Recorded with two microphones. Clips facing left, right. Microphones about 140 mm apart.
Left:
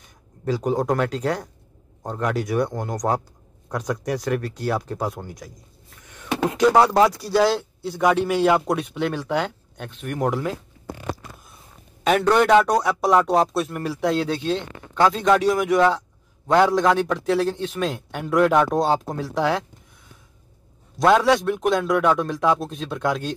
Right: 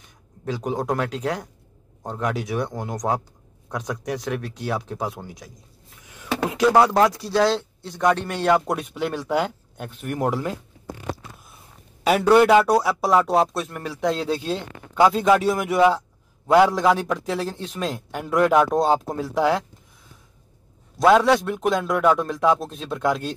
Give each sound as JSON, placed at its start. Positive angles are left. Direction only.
{"t": 0.5, "sound": "a man's voice", "side_deg": 0}
{"t": 12.0, "sound": "a man's voice", "side_deg": -10}
{"t": 21.0, "sound": "a man's voice", "side_deg": 0}